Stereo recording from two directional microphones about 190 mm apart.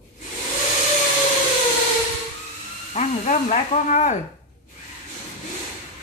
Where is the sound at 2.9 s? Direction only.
40° left (ahead or behind).